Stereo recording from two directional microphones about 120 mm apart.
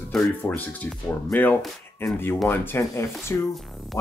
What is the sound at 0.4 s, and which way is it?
Speech, 15° left (ahead or behind).